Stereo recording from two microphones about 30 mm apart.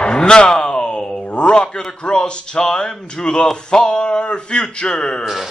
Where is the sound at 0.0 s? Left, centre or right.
Left.